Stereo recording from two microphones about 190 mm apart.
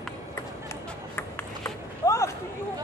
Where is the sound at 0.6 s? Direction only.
15° left (ahead or behind).